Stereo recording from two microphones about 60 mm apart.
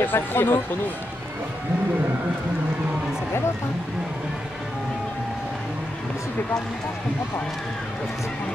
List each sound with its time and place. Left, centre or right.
0.0 s speech: left